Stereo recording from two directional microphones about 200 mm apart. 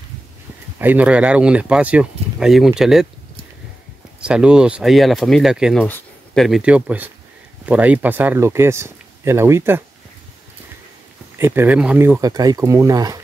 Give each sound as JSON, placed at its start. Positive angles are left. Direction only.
{"t": 0.7, "sound": "speech", "side_deg": -10}
{"t": 4.2, "sound": "speech", "side_deg": -5}
{"t": 11.3, "sound": "speech", "side_deg": -10}